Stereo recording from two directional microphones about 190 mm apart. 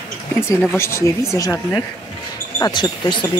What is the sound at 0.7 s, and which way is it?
Speech, 15° left (ahead or behind).